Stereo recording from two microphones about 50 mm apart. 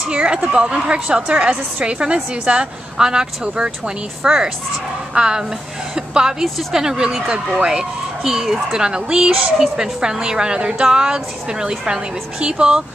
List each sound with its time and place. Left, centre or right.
0.1 s a woman's voice: centre